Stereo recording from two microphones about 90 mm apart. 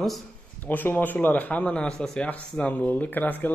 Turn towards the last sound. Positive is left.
turn(degrees=20)  # may be behind; listen again after turning